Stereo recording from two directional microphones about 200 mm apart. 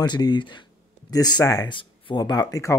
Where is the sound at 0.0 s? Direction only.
20° left (ahead or behind).